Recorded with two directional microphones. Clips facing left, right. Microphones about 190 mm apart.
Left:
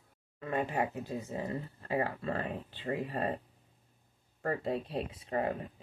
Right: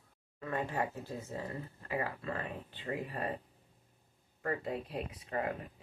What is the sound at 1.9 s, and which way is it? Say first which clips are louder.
Speech: left 4 dB; 30° left (ahead or behind).